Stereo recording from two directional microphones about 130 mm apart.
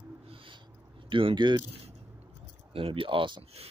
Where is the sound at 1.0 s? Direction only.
40° right (ahead or behind).